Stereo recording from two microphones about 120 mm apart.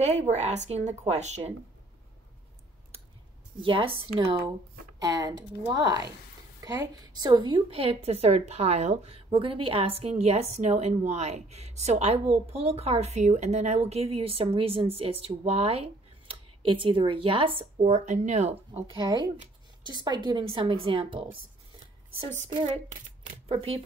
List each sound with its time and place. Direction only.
0.0 s speech: 70° right (ahead or behind)
3.6 s a woman's voice: 50° right (ahead or behind)
4.9 s a woman's voice: 30° right (ahead or behind); by 17.6 s 50° right (ahead or behind)
17.7 s speech: 75° right (ahead or behind)
18.9 s a woman's voice: 35° right (ahead or behind)
22.5 s a woman's voice: 45° right (ahead or behind)
23.5 s a woman's voice: 55° right (ahead or behind)